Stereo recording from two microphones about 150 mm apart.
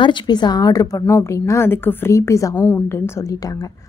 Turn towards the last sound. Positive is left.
turn(degrees=20)  # may be behind; listen again after turning